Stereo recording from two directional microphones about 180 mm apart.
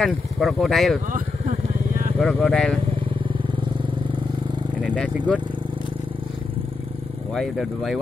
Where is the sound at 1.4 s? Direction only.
50° right (ahead or behind).